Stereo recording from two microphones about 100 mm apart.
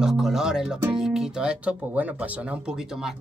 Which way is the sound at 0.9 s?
5° right (ahead or behind).